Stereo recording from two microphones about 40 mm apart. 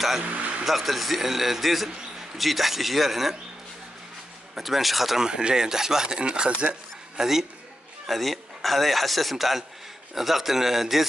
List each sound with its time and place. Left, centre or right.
0.2 s vehicle: right
0.7 s speech: centre
4.6 s speech: centre
5.2 s speech: centre
7.2 s a man's voice: centre
8.1 s speech: centre